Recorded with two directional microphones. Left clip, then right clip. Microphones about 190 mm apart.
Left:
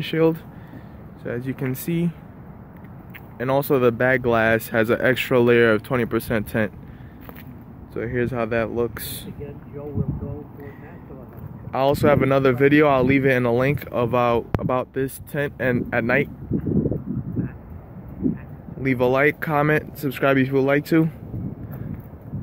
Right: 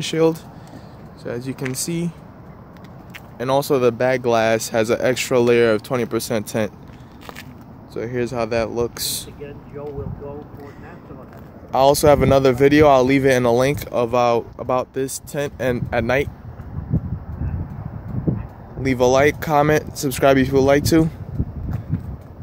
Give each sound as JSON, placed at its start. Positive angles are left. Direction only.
{"t": 0.0, "sound": "speech", "side_deg": -10}
{"t": 3.3, "sound": "speech", "side_deg": -10}
{"t": 7.9, "sound": "speech", "side_deg": -5}
{"t": 11.7, "sound": "speech", "side_deg": -20}
{"t": 18.8, "sound": "speech", "side_deg": -20}